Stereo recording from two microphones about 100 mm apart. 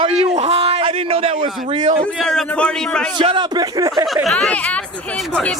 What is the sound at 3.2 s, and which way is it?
Speech, 50° right (ahead or behind).